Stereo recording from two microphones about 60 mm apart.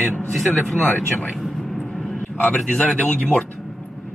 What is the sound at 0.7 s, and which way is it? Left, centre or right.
Speech, left.